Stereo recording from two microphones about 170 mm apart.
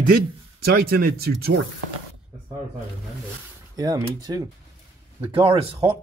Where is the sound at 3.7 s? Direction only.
20° right (ahead or behind).